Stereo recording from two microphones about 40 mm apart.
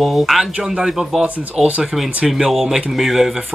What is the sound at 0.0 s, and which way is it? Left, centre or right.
Speech, centre.